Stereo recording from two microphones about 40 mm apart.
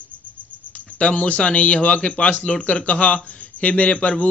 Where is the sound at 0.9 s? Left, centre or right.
Left.